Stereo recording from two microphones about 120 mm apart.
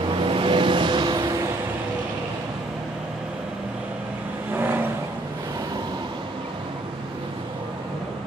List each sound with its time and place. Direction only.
0.2 s vehicle: 45° right (ahead or behind)